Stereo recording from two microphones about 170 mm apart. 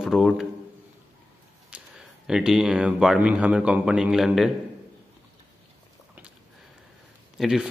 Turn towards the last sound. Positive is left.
turn(degrees=0)  # may be behind; listen again after turning